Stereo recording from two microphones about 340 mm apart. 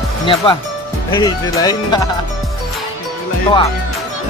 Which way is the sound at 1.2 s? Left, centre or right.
Centre.